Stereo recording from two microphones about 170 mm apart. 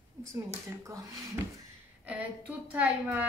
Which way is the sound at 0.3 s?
20° right (ahead or behind).